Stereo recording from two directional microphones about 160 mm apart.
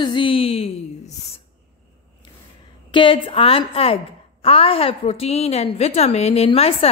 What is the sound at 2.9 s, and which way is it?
Speech, 30° left (ahead or behind).